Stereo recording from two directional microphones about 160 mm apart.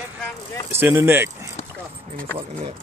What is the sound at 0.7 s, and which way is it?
Speech, 15° right (ahead or behind).